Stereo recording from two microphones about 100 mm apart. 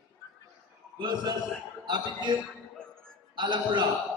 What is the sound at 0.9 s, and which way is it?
Speech, 50° right (ahead or behind).